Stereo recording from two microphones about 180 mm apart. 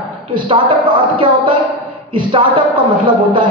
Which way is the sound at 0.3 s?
25° right (ahead or behind).